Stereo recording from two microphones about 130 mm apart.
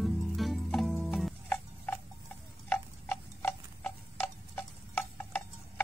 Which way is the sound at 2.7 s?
15° left (ahead or behind).